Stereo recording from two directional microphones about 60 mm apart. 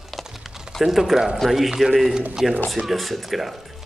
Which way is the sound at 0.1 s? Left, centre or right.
Centre.